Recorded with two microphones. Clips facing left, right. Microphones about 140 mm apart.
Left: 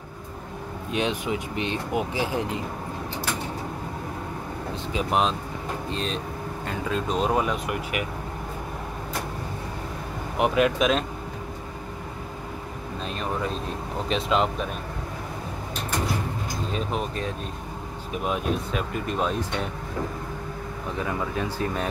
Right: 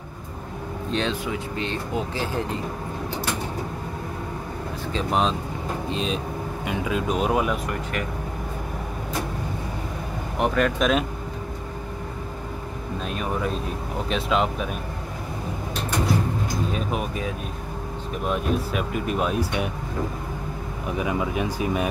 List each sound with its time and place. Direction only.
0.9 s speech: 15° left (ahead or behind)
4.9 s speech: 5° left (ahead or behind)
7.7 s speech: 10° left (ahead or behind)
10.3 s speech: 5° left (ahead or behind)
13.0 s speech: 5° right (ahead or behind)
16.7 s speech: 5° right (ahead or behind)
20.9 s speech: 15° right (ahead or behind)